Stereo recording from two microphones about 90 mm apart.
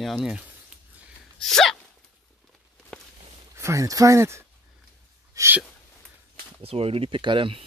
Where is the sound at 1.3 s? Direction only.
5° left (ahead or behind).